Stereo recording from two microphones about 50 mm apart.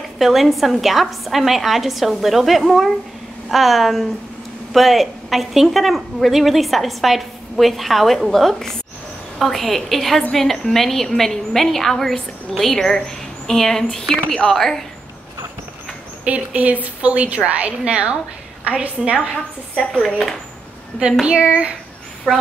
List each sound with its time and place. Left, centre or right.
0.2 s a woman's voice: centre
16.3 s a woman's voice: right
21.0 s a woman's voice: centre
22.3 s a woman's voice: centre